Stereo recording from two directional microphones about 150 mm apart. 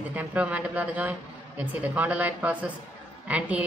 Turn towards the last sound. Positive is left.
turn(degrees=-10)  # may be behind; listen again after turning